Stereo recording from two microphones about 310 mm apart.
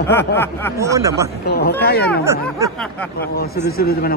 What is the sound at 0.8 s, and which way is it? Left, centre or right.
Speech, centre.